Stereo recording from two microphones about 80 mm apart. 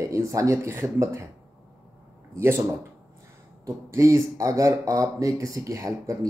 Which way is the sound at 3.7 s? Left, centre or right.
Right.